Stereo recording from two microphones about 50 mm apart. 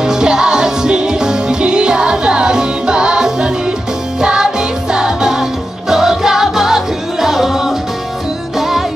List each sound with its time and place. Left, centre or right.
0.0 s music: centre